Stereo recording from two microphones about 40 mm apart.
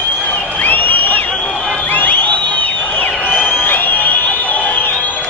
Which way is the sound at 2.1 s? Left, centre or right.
Left.